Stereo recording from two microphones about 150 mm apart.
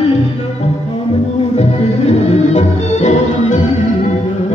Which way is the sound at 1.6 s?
50° left (ahead or behind).